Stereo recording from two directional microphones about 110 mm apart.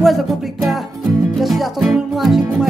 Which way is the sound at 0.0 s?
Centre (ahead or behind).